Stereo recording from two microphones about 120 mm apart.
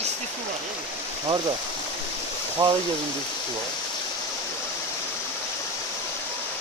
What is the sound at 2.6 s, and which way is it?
Speech, 35° right (ahead or behind).